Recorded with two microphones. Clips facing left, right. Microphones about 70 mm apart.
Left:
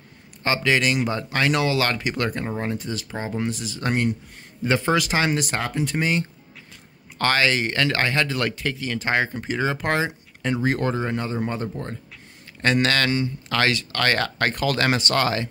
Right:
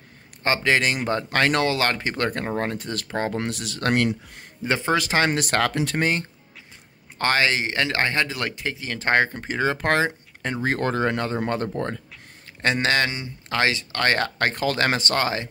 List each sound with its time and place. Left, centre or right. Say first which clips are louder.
0.4 s speech: even; right
4.9 s speech: even; right
5.6 s speech: right 2 dB; right
7.2 s speech: left 1 dB; right
8.9 s speech: right 4 dB; right
11.0 s speech: right 2 dB; right
12.6 s speech: left 1 dB; right